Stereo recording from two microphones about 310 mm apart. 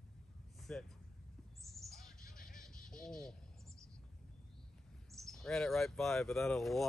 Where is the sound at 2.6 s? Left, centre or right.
Centre.